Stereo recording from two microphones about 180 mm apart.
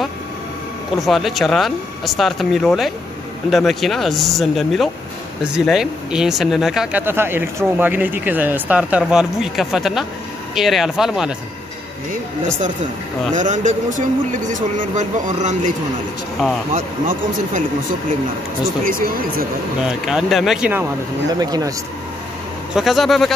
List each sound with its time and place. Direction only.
0.9 s speech: centre (ahead or behind)
13.3 s a man's voice: 45° right (ahead or behind)
16.7 s a man's voice: 45° right (ahead or behind)
18.9 s a man's voice: 55° right (ahead or behind)
19.8 s speech: 5° right (ahead or behind)
21.4 s speech: 20° right (ahead or behind)
22.8 s speech: centre (ahead or behind)